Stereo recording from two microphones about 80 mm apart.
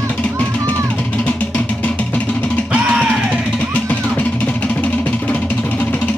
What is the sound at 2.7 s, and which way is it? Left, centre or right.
Music, centre.